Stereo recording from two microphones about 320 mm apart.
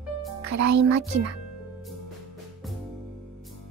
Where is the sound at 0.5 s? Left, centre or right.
Right.